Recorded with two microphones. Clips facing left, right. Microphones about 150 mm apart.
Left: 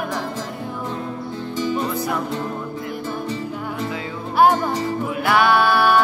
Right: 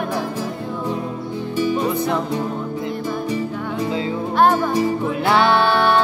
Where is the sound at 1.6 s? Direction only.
10° right (ahead or behind).